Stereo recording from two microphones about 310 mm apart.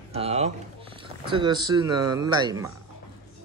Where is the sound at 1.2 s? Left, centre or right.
Centre.